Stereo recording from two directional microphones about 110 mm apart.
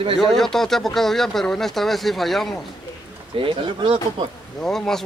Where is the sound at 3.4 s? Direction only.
50° right (ahead or behind).